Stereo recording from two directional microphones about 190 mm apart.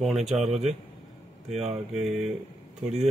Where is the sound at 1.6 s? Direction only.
Centre (ahead or behind).